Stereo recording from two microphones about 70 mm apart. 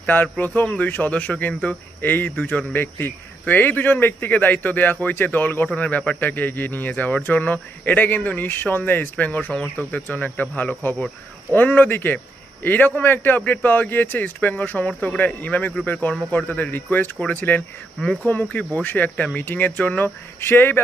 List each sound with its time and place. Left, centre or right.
0.0 s speech: left